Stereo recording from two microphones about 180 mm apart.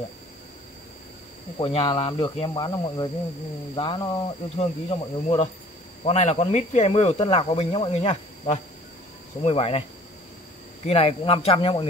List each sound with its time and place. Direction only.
1.6 s speech: 30° left (ahead or behind)
10.9 s speech: 35° left (ahead or behind)